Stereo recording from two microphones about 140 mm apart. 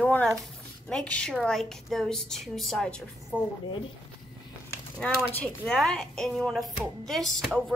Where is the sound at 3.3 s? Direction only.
15° right (ahead or behind).